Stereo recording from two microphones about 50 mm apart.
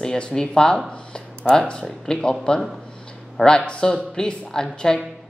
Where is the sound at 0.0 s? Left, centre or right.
Centre.